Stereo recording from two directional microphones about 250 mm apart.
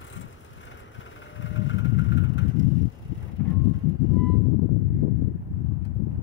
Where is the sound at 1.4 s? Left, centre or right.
Left.